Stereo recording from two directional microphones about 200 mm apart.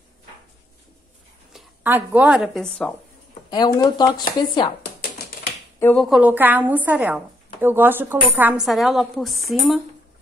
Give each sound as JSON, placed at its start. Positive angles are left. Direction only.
{"t": 1.5, "sound": "speech", "side_deg": -10}
{"t": 3.4, "sound": "speech", "side_deg": 20}
{"t": 5.8, "sound": "speech", "side_deg": 10}
{"t": 6.0, "sound": "a woman's voice", "side_deg": -5}